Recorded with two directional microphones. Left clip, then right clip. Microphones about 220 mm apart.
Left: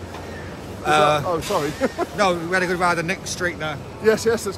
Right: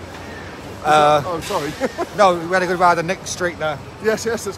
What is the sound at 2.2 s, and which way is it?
Speech, 5° right (ahead or behind).